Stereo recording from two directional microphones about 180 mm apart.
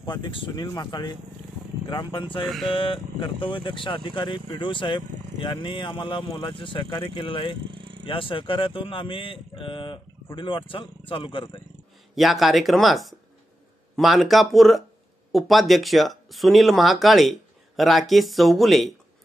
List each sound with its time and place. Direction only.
0.0 s speech: 25° left (ahead or behind)
2.4 s speech: centre (ahead or behind)
2.7 s speech: 30° left (ahead or behind)
12.2 s speech: centre (ahead or behind)